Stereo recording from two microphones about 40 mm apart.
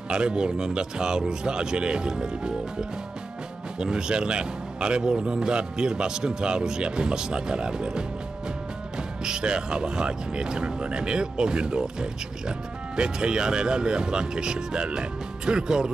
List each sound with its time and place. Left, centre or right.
0.1 s speech: right